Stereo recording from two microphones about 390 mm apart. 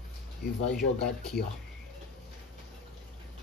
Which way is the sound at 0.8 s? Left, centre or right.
Left.